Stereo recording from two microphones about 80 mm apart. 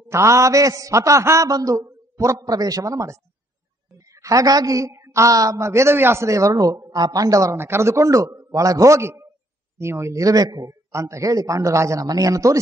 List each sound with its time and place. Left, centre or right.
0.1 s a man's voice: right
7.5 s a man's voice: right
10.9 s a woman's voice: right